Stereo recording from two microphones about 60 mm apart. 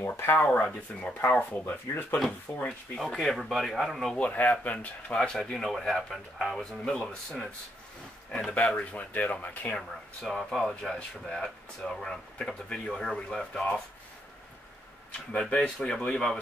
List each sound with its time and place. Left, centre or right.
0.0 s speech: left
0.7 s speech: centre
2.5 s speech: left
3.1 s speech: centre
4.2 s speech: left
8.5 s speech: centre
9.8 s speech: centre
15.1 s speech: centre